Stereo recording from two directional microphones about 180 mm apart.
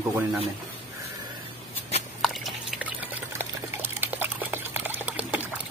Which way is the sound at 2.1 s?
Centre (ahead or behind).